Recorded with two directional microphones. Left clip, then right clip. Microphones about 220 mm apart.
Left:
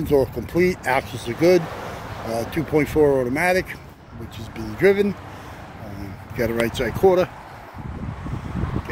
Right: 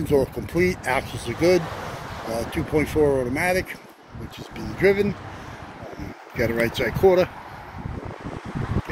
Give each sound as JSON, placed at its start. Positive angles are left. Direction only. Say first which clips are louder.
{"t": 0.0, "sound": "speech", "louder": "left 2 dB", "side_deg": 15}
{"t": 1.6, "sound": "a sound", "louder": "left 1 dB", "side_deg": 55}
{"t": 2.5, "sound": "speech", "louder": "left 3 dB", "side_deg": 25}
{"t": 6.3, "sound": "speech", "louder": "even", "side_deg": 10}